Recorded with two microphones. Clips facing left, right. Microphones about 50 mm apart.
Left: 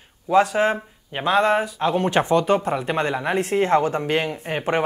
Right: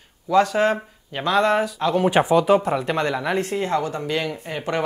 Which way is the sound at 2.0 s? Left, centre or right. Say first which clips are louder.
Right 3 dB; centre.